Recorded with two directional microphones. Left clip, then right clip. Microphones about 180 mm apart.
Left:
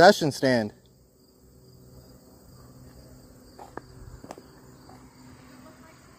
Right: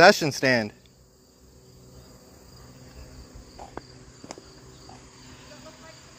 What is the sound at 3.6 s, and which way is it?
Cricket, 5° right (ahead or behind).